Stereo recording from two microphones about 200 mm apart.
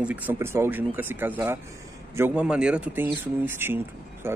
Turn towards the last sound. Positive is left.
turn(degrees=-10)  # may be behind; listen again after turning